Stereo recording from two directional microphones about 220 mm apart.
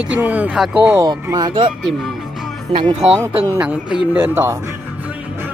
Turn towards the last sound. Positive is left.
turn(degrees=-10)  # may be behind; listen again after turning